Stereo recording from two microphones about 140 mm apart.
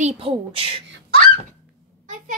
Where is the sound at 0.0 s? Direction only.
40° right (ahead or behind).